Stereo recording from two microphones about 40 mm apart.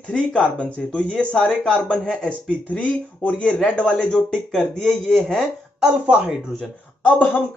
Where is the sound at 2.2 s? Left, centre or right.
Left.